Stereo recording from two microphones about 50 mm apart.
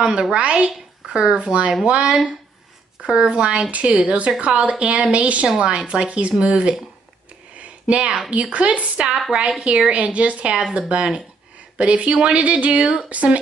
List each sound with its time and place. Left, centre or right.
0.0 s a woman's voice: centre
7.5 s a sound: right
8.3 s a woman's voice: right